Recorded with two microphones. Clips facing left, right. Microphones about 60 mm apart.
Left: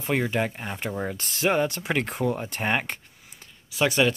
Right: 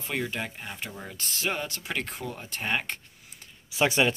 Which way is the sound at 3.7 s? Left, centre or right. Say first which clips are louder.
Left 2 dB; centre.